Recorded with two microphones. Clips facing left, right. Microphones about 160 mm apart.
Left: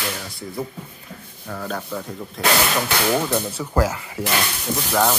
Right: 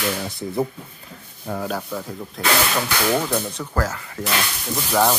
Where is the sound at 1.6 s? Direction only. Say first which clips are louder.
Left 2 dB; 5° right (ahead or behind).